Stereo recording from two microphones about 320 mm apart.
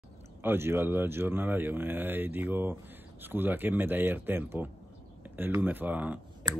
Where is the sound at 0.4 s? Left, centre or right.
Centre.